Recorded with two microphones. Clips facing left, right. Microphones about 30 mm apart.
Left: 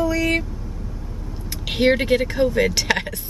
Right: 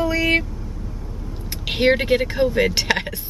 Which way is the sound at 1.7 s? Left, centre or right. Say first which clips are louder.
Even; centre.